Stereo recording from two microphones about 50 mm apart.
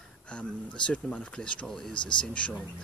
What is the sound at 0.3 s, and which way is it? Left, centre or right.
Speech, left.